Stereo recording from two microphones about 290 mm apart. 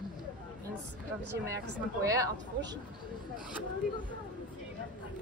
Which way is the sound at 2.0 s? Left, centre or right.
Centre.